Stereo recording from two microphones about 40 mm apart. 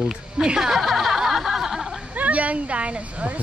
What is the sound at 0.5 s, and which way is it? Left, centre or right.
Speech, centre.